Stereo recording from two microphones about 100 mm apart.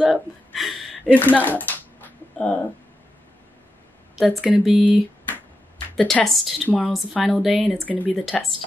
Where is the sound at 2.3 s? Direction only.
10° left (ahead or behind).